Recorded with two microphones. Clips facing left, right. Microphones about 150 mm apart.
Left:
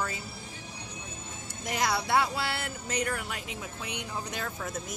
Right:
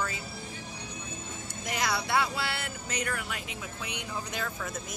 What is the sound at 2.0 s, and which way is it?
Speech, 40° left (ahead or behind).